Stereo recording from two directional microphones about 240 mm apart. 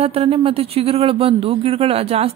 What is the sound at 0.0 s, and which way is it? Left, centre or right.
Speech, right.